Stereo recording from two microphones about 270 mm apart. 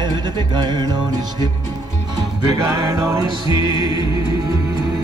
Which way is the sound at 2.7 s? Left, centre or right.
Centre.